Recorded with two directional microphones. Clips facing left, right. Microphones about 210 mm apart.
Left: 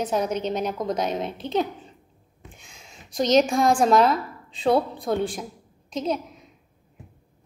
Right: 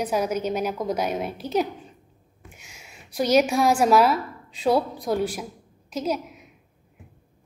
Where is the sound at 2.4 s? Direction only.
10° right (ahead or behind).